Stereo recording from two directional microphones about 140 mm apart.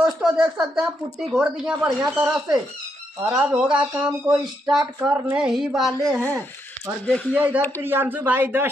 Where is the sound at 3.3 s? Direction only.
5° right (ahead or behind).